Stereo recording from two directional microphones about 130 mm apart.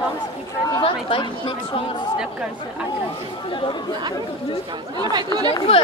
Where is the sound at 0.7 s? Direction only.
40° left (ahead or behind).